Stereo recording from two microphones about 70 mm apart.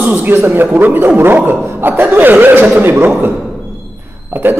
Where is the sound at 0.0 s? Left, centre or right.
Right.